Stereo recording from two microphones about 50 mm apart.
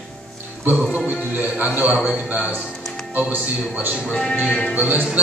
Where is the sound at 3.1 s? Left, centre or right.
Right.